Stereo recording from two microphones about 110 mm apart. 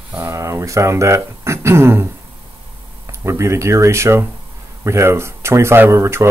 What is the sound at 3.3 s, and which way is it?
Speech, 25° right (ahead or behind).